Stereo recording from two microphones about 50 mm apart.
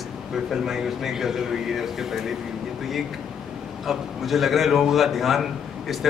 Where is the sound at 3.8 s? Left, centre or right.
Centre.